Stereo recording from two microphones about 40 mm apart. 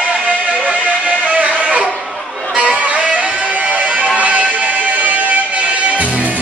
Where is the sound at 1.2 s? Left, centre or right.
Right.